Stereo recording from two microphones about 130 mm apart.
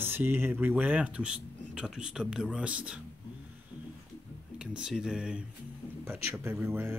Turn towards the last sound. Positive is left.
turn(degrees=-15)  # may be behind; listen again after turning